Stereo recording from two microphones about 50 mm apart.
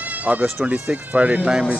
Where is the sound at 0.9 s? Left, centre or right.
Right.